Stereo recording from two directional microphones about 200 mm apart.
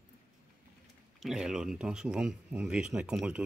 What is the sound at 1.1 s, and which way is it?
Speech, centre (ahead or behind).